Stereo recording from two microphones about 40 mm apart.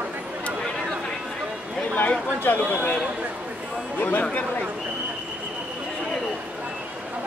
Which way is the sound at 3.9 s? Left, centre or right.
Left.